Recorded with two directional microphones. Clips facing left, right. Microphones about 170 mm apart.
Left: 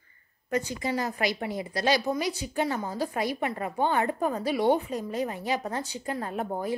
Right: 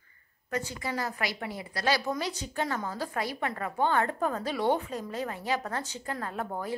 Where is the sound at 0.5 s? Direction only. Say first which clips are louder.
Left 5 dB; 20° left (ahead or behind).